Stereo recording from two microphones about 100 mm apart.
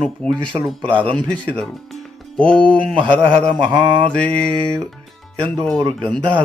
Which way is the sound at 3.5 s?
50° right (ahead or behind).